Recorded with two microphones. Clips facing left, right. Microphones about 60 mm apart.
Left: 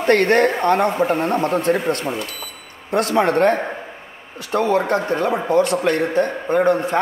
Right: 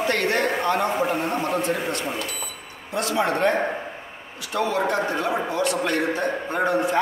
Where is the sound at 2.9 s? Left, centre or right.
Left.